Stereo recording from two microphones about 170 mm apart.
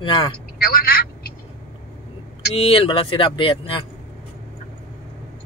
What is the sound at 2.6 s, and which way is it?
Speech, 35° left (ahead or behind).